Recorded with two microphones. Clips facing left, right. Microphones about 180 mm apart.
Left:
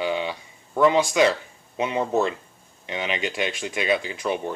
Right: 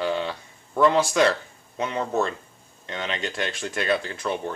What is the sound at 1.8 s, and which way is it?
Speech, 15° left (ahead or behind).